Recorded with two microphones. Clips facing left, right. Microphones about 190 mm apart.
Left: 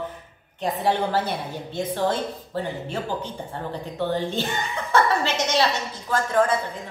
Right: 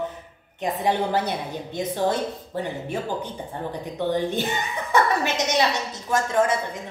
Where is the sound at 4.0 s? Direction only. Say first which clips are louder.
Right 1 dB; 15° right (ahead or behind).